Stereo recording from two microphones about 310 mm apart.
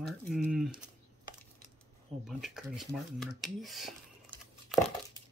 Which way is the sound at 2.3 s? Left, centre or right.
Centre.